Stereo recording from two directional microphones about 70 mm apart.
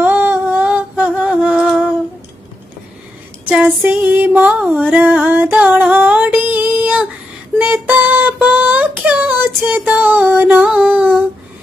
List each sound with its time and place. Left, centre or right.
0.0 s humming: right
3.9 s music: right
5.2 s a sound: right
7.5 s music: right
8.0 s a sound: right
10.0 s music: right
10.7 s female singing: centre